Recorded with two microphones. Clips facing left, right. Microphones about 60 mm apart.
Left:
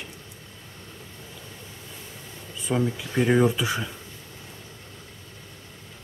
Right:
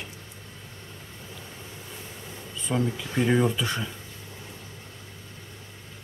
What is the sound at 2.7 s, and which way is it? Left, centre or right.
Speech, centre.